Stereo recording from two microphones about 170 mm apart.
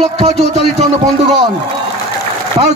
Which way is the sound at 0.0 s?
40° right (ahead or behind).